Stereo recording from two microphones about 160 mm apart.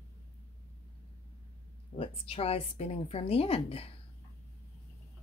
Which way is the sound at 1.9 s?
35° left (ahead or behind).